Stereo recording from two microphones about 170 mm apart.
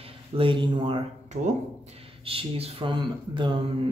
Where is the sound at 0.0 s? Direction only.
30° right (ahead or behind).